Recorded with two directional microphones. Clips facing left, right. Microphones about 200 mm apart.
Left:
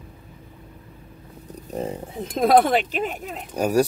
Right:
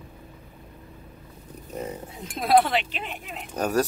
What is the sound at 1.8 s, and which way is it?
Speech, 30° left (ahead or behind).